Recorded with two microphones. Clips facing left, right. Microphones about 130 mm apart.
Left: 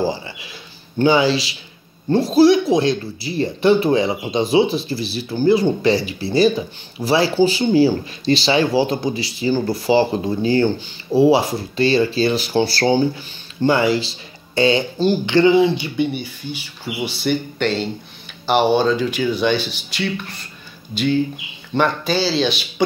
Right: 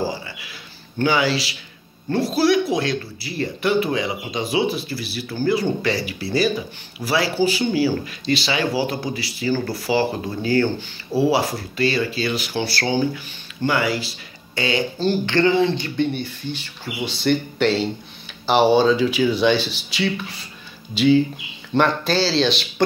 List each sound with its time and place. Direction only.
0.0 s a sound: 20° left (ahead or behind)
0.9 s speech: 25° left (ahead or behind)
15.0 s speech: 15° left (ahead or behind)